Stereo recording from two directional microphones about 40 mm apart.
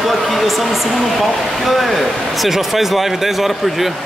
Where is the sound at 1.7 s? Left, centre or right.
Centre.